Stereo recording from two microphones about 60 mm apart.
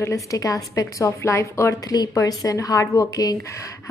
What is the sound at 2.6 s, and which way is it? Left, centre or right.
Speech, left.